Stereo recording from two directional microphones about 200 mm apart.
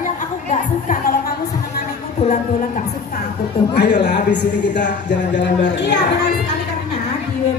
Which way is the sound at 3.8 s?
60° left (ahead or behind).